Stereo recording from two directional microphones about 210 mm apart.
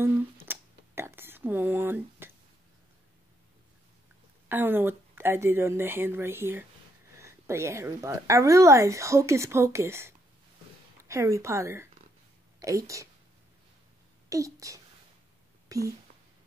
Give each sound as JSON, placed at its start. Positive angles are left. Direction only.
{"t": 0.0, "sound": "a sound", "side_deg": -10}
{"t": 4.5, "sound": "speech", "side_deg": -10}
{"t": 14.3, "sound": "a child's voice", "side_deg": -15}